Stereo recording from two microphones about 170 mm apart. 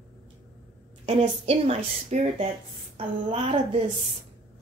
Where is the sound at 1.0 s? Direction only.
40° right (ahead or behind).